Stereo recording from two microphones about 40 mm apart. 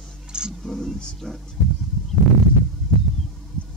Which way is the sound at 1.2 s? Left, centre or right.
Left.